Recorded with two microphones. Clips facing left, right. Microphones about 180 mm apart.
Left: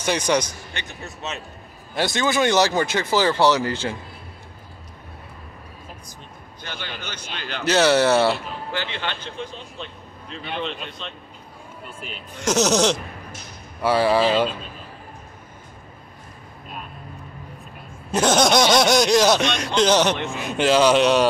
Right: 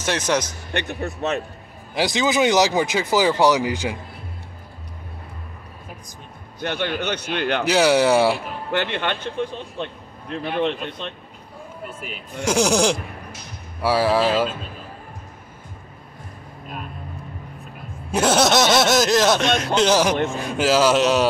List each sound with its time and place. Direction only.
0.0 s speech: centre (ahead or behind)
0.7 s a man's voice: 60° right (ahead or behind)
2.1 s speech: 15° right (ahead or behind)
6.6 s a man's voice: 60° right (ahead or behind)
7.6 s speech: 10° right (ahead or behind)
8.7 s a man's voice: 60° right (ahead or behind)
12.4 s speech: 10° right (ahead or behind)
18.1 s speech: 5° right (ahead or behind)